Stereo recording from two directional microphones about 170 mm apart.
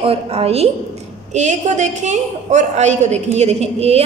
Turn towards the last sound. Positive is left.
turn(degrees=-40)  # may be behind; listen again after turning